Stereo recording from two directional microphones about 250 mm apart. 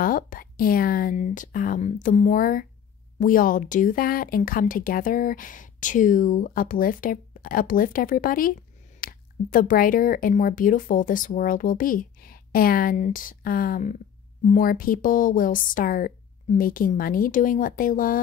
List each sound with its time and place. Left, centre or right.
0.0 s speech: left